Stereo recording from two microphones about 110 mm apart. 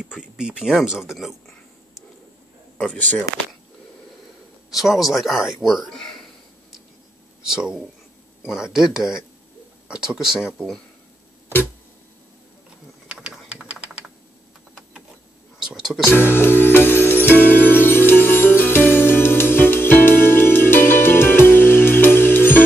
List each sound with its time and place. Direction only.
0.0 s speech: 5° right (ahead or behind)
2.9 s speech: 15° left (ahead or behind)
4.7 s speech: centre (ahead or behind)
7.4 s speech: 5° right (ahead or behind)
13.1 s typing: 5° right (ahead or behind)
15.7 s speech: 5° right (ahead or behind)
16.1 s music: 20° left (ahead or behind)